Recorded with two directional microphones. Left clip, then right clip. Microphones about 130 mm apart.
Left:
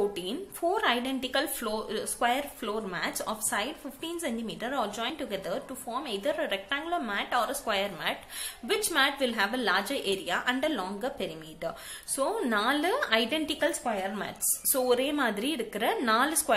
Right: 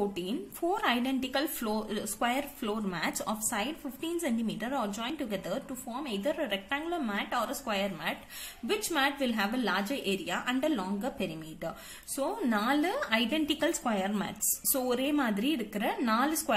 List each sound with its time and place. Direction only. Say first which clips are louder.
0.1 s a woman's voice: left 1 dB; 25° right (ahead or behind)